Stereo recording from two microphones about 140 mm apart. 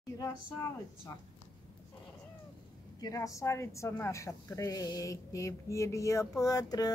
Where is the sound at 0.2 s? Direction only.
20° left (ahead or behind).